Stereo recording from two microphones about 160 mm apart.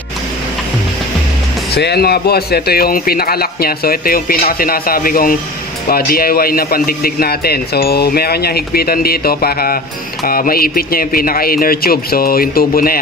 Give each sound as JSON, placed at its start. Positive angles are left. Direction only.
{"t": 1.8, "sound": "a man's voice", "side_deg": 85}